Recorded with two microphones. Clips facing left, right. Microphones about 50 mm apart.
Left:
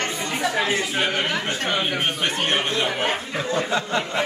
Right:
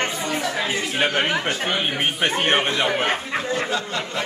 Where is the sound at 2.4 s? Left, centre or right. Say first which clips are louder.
Right 3 dB; right.